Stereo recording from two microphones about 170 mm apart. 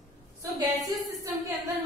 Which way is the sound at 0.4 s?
20° right (ahead or behind).